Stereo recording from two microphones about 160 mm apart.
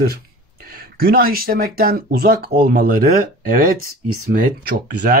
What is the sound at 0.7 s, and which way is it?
Speech, 70° right (ahead or behind).